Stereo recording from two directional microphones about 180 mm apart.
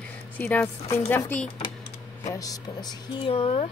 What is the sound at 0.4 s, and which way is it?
Speech, 15° left (ahead or behind).